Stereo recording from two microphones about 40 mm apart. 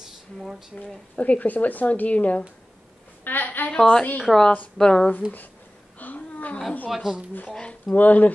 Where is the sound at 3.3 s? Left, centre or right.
Left.